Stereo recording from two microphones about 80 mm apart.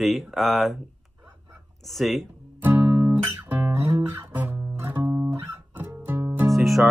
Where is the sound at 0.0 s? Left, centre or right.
Centre.